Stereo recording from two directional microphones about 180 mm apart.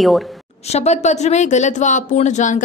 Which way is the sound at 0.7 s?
40° left (ahead or behind).